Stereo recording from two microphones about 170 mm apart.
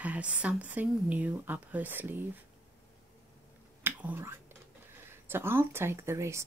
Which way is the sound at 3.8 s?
15° right (ahead or behind).